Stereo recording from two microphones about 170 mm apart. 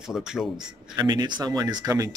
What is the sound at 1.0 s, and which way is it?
Speech, 25° right (ahead or behind).